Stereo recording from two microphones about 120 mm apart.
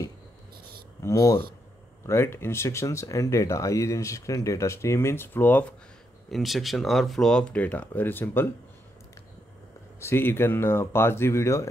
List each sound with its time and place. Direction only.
1.0 s speech: 30° left (ahead or behind); by 5.8 s 15° left (ahead or behind)
6.3 s speech: centre (ahead or behind); by 8.5 s 15° left (ahead or behind)
9.9 s speech: 20° left (ahead or behind)